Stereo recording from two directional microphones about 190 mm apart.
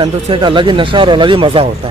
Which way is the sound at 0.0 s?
25° right (ahead or behind).